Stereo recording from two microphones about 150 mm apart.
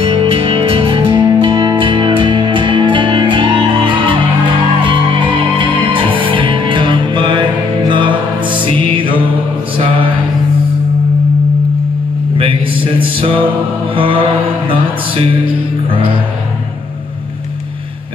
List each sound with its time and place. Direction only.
0.0 s music: 35° right (ahead or behind)
7.9 s mantra: 35° right (ahead or behind)
8.6 s music: 35° right (ahead or behind)
12.4 s a sound: 35° right (ahead or behind)
13.9 s mantra: 35° right (ahead or behind)
15.9 s music: 35° right (ahead or behind)